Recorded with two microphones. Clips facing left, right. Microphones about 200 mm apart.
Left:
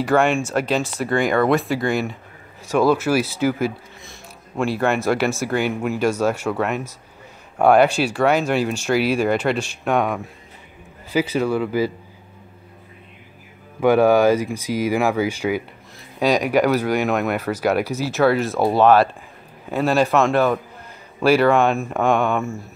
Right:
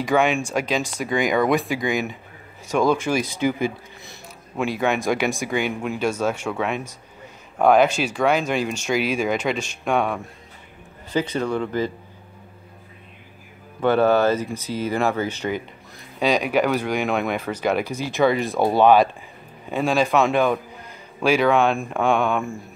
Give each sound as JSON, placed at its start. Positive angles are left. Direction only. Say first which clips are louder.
{"t": 0.4, "sound": "speech", "louder": "left 3 dB", "side_deg": -10}
{"t": 2.7, "sound": "speech", "louder": "left 3 dB", "side_deg": 5}
{"t": 13.7, "sound": "a man's voice", "louder": "left 3 dB", "side_deg": 10}